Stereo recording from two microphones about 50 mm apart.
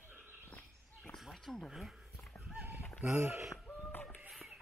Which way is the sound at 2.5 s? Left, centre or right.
Right.